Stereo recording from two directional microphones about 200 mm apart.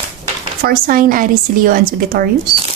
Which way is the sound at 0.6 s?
45° right (ahead or behind).